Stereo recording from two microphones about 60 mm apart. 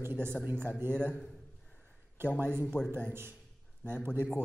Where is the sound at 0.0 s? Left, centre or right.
Right.